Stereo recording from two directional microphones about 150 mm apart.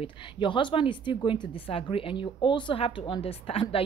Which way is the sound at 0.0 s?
30° left (ahead or behind).